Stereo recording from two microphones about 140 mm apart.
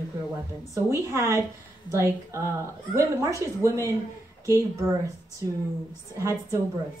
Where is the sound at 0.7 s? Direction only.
20° right (ahead or behind).